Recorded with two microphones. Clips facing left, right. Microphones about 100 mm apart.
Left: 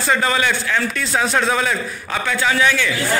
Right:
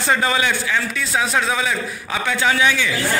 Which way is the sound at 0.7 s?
5° right (ahead or behind).